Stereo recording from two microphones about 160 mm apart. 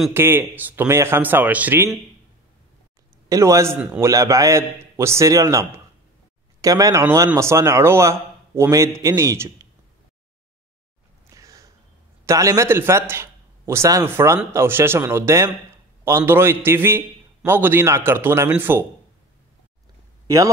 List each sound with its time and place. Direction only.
0.1 s a man's voice: 15° right (ahead or behind)
3.3 s a man's voice: 20° right (ahead or behind)
11.3 s a sound: 20° right (ahead or behind)
12.3 s a man's voice: 20° right (ahead or behind)